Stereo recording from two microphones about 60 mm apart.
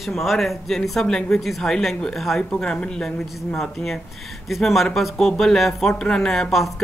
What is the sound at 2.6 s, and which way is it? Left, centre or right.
A woman's voice, centre.